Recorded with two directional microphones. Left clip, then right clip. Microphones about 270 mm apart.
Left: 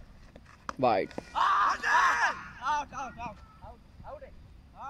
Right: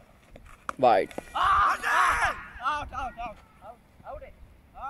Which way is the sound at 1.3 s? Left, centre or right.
Centre.